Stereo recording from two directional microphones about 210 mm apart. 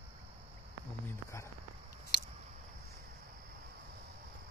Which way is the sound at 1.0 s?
10° left (ahead or behind).